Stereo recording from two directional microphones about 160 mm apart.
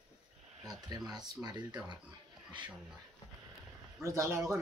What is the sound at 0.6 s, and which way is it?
Speech, 25° right (ahead or behind).